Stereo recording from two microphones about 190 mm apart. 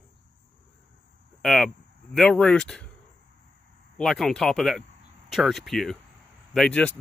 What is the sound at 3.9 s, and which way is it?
Speech, centre (ahead or behind).